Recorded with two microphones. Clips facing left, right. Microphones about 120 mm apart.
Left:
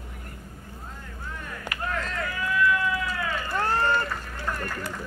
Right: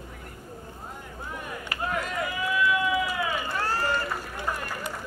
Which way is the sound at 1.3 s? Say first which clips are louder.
Right 3 dB; 15° right (ahead or behind).